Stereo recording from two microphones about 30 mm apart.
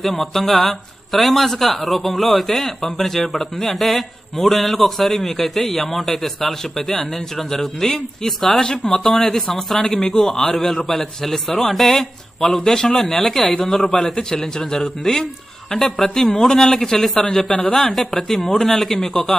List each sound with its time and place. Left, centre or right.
0.0 s a man's voice: centre
8.8 s speech: left
9.3 s a man's voice: centre
9.8 s a man's voice: left
13.1 s a man's voice: centre
14.1 s a man's voice: centre